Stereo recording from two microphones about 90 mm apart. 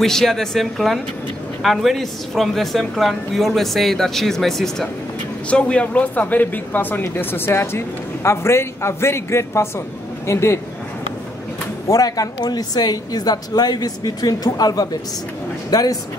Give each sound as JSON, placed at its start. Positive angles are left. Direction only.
{"t": 0.0, "sound": "a woman's voice", "side_deg": 5}
{"t": 5.5, "sound": "a man's voice", "side_deg": 15}
{"t": 11.9, "sound": "a man's voice", "side_deg": 40}